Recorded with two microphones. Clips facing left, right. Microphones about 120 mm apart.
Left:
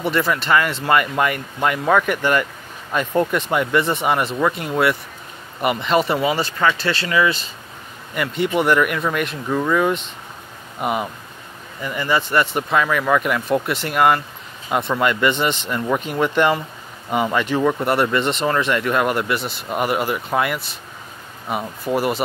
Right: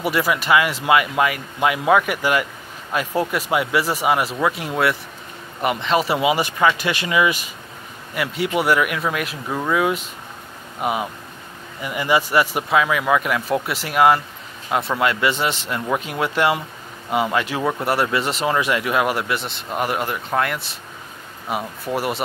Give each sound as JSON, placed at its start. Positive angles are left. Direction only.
{"t": 0.0, "sound": "speech", "side_deg": -10}
{"t": 6.1, "sound": "speech", "side_deg": -15}
{"t": 8.1, "sound": "speech", "side_deg": -5}
{"t": 11.8, "sound": "speech", "side_deg": -10}